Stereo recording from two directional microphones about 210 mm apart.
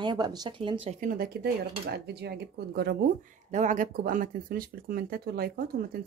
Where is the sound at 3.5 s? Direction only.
35° right (ahead or behind).